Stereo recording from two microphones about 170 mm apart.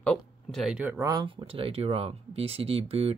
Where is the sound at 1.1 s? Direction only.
25° right (ahead or behind).